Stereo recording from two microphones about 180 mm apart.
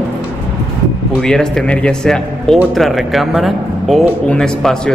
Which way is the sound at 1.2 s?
5° left (ahead or behind).